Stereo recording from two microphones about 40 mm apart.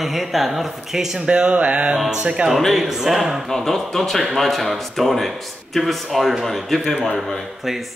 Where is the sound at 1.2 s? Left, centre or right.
Right.